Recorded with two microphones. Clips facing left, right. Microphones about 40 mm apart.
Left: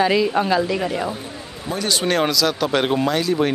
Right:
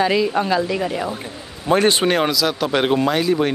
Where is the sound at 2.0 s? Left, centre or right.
Centre.